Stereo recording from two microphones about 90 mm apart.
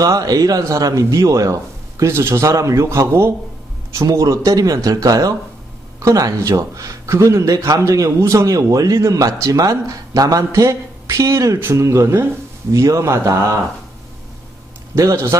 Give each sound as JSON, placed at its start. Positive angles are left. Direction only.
{"t": 0.0, "sound": "speech", "side_deg": -45}
{"t": 15.0, "sound": "speech", "side_deg": -30}